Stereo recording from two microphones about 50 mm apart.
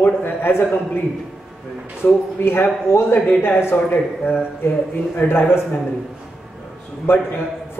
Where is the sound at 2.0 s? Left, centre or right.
Left.